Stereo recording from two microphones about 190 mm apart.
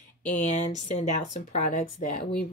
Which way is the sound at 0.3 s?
40° left (ahead or behind).